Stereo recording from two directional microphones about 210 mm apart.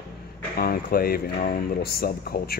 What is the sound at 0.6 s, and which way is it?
Speech, 45° left (ahead or behind).